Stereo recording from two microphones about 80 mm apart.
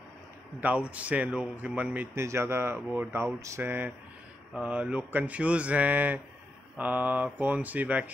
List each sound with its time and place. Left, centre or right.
0.6 s speech: centre
2.1 s speech: right
3.6 s speech: right